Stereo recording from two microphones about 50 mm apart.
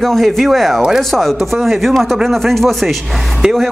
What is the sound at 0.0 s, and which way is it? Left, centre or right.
Chopping, centre.